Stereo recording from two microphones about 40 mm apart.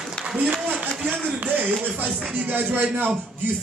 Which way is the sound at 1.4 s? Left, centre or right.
Right.